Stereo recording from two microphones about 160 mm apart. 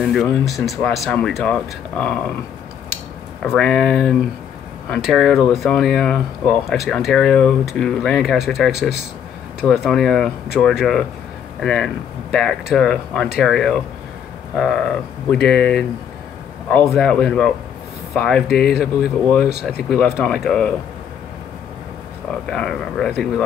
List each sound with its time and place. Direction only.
0.0 s speech: centre (ahead or behind)
3.4 s speech: 5° left (ahead or behind)
18.5 s speech: 80° left
19.6 s speech: centre (ahead or behind)
22.5 s speech: 5° left (ahead or behind)